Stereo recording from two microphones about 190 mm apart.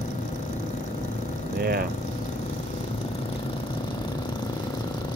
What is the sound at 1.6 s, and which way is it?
Speech, 55° right (ahead or behind).